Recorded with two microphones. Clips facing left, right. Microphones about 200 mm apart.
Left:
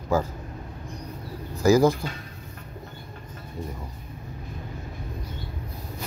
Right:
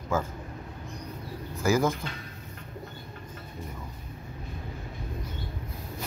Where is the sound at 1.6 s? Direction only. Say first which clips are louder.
Left 7 dB; 35° left (ahead or behind).